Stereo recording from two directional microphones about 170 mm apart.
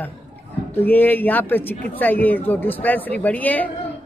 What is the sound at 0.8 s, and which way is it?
A woman's voice, 10° left (ahead or behind).